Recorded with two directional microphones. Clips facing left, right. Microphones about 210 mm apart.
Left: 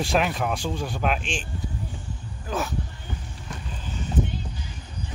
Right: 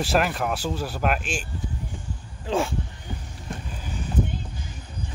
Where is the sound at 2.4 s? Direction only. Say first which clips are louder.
Right 4 dB; 25° right (ahead or behind).